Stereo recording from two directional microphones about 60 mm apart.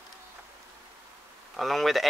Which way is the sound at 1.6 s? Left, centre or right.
Centre.